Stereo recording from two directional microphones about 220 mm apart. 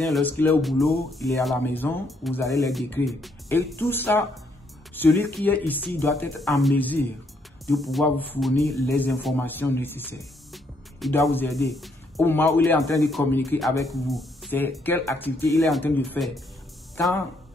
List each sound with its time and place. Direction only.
0.0 s speech: 5° left (ahead or behind)
2.4 s speech: 15° left (ahead or behind)
2.7 s speech: centre (ahead or behind)
3.4 s speech: 10° left (ahead or behind)
7.6 s speech: centre (ahead or behind)